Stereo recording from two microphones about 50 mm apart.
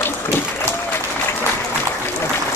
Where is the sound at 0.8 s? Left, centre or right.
Left.